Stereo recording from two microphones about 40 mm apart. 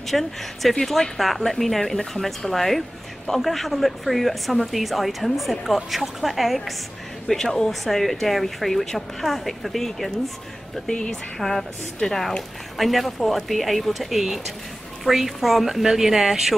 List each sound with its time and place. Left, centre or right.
0.1 s speech: centre
7.2 s speech: centre
10.9 s speech: centre
11.3 s a woman's voice: centre